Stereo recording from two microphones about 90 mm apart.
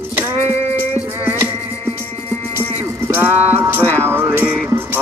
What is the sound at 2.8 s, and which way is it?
Music, 25° right (ahead or behind).